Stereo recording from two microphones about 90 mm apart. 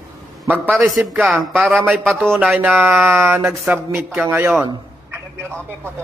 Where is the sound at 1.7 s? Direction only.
15° right (ahead or behind).